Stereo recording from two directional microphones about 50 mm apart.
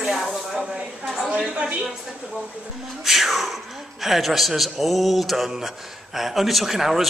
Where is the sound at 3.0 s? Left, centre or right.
Centre.